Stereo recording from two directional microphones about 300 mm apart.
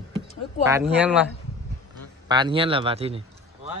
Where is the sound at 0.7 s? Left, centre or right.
Centre.